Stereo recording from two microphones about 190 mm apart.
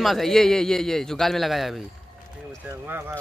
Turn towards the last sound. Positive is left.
turn(degrees=-10)  # may be behind; listen again after turning